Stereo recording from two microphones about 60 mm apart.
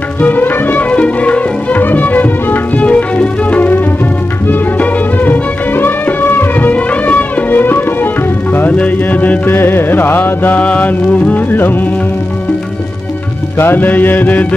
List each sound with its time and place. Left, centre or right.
0.2 s music: left
1.8 s music: left
9.5 s music: left
10.6 s music: left
13.6 s music: left